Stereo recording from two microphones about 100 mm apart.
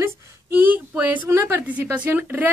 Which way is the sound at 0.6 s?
20° right (ahead or behind).